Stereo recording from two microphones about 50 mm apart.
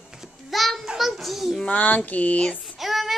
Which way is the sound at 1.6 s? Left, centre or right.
Left.